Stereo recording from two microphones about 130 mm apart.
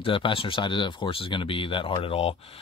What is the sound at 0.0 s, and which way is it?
Speech, 40° left (ahead or behind).